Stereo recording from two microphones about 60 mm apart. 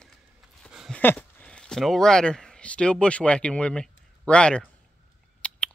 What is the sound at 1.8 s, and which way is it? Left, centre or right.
Speech, centre.